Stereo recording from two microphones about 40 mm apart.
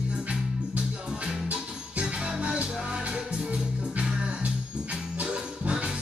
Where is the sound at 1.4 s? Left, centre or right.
Right.